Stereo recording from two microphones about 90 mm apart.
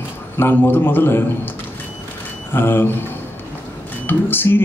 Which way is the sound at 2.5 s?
25° left (ahead or behind).